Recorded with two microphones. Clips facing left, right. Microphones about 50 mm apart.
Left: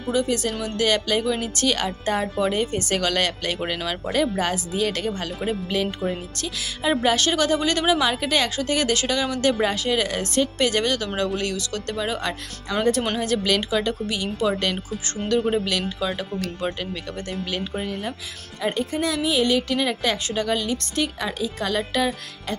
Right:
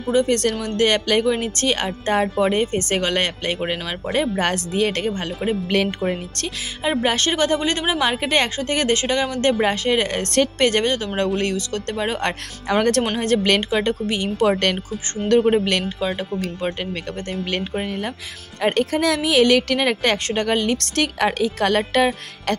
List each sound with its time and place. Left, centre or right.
0.1 s a woman's voice: right
4.4 s a woman's voice: right
5.7 s a woman's voice: right
6.8 s a woman's voice: right
10.3 s a woman's voice: right
16.2 s speech: right
17.3 s speech: right
18.6 s a woman's voice: right
20.8 s a woman's voice: right